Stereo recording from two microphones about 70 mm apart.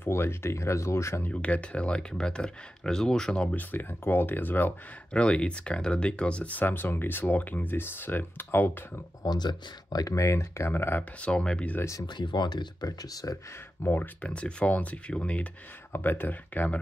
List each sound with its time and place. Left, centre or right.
0.0 s speech: left
1.3 s speech: centre
3.5 s speech: left
5.1 s speech: centre; by 9.0 s left
9.2 s speech: left
10.7 s speech: left
11.1 s speech: centre
12.1 s speech: left
13.8 s speech: left
14.2 s speech: centre
15.9 s speech: left